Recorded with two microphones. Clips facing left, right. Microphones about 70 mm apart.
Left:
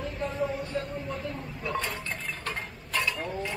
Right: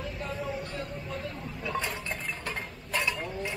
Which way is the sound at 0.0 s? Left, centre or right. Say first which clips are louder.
Left 4 dB; centre.